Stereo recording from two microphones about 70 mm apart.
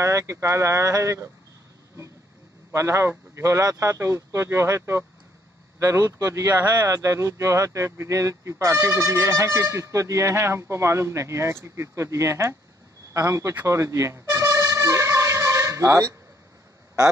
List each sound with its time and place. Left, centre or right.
0.0 s speech: right
2.7 s speech: right
13.7 s music: right